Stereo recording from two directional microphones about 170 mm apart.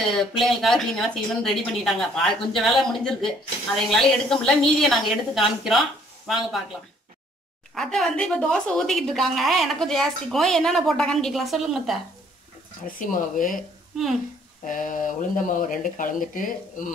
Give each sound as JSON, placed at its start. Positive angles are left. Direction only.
{"t": 0.4, "sound": "speech", "side_deg": 0}
{"t": 7.7, "sound": "speech", "side_deg": 0}
{"t": 12.8, "sound": "speech", "side_deg": 50}
{"t": 14.6, "sound": "speech", "side_deg": 50}